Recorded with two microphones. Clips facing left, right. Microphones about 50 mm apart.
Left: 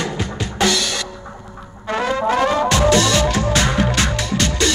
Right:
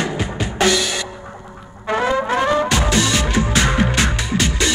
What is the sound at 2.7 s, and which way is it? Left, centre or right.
Music, centre.